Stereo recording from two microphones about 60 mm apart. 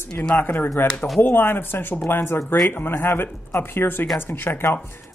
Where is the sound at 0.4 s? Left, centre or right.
Left.